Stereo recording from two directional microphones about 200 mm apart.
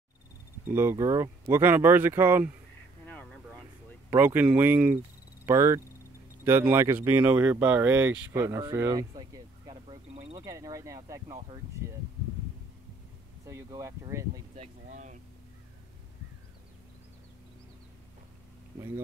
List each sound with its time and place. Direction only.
0.7 s speech: 10° right (ahead or behind)
3.1 s vehicle: 5° left (ahead or behind)
4.1 s speech: 10° right (ahead or behind)
13.5 s speech: 15° right (ahead or behind)
14.5 s speech: 35° right (ahead or behind)